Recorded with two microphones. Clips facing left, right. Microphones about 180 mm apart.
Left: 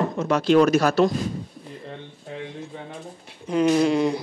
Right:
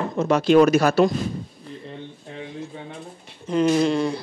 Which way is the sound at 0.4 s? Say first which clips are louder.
Right 1 dB; 5° right (ahead or behind).